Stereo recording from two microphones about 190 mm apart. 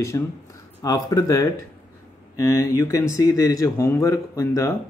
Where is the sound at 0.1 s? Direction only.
15° left (ahead or behind).